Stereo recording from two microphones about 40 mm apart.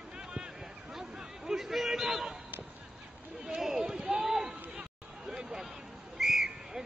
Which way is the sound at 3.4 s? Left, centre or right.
Centre.